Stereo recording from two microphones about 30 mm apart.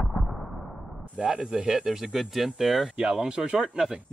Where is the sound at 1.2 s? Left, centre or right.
Right; by 2.8 s centre.